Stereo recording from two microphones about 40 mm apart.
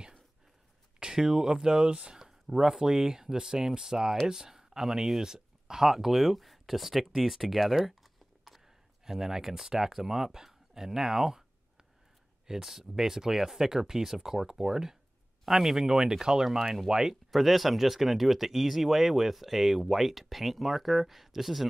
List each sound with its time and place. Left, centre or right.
0.9 s speech: centre
12.4 s speech: centre